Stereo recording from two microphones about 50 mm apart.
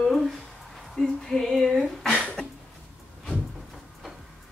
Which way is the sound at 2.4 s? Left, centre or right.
Centre.